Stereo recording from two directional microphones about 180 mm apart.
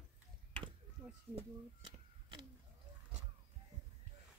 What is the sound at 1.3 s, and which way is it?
Speech, 30° right (ahead or behind).